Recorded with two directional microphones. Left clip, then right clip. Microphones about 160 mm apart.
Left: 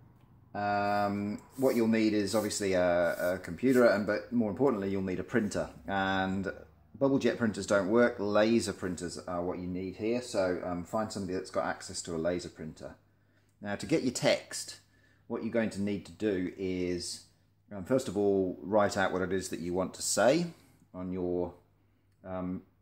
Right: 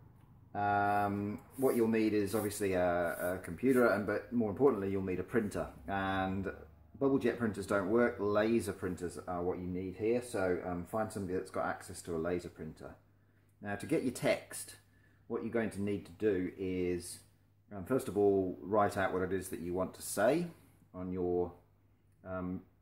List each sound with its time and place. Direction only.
0.5 s speech: 30° left (ahead or behind)